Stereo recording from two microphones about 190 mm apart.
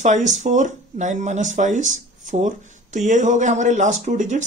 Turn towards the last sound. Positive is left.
turn(degrees=-40)  # may be behind; listen again after turning